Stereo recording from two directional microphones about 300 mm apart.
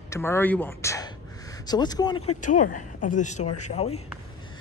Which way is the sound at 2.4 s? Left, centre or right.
Left.